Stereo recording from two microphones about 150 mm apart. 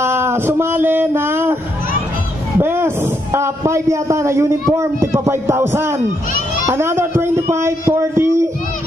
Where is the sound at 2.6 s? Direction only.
15° right (ahead or behind).